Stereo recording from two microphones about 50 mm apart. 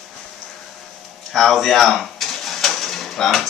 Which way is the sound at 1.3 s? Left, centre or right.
Centre.